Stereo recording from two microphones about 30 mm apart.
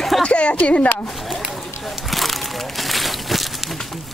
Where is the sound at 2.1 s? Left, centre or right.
Centre.